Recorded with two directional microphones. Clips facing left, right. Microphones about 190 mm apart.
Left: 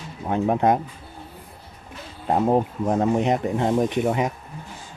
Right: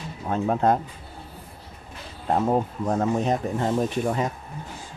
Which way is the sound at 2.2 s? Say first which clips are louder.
Left 2 dB; 15° left (ahead or behind).